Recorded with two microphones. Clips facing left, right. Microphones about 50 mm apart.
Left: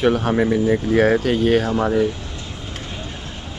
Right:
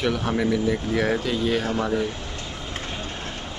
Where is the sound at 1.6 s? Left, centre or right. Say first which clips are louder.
Left 5 dB; left.